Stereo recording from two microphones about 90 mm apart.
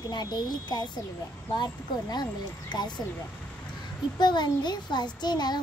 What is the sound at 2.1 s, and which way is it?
Speech, 50° left (ahead or behind).